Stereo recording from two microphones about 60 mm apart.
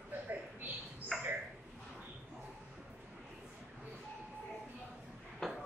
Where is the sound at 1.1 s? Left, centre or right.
Centre.